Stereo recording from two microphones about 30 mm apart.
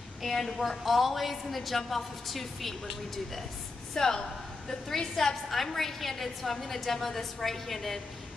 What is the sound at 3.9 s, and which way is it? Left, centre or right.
A woman's voice, centre.